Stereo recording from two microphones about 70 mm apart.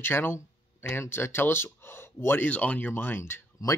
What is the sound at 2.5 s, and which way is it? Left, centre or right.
Speech, left.